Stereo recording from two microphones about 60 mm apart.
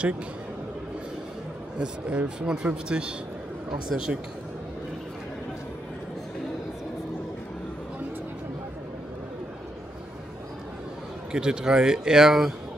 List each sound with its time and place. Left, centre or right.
1.8 s speech: centre
11.3 s speech: centre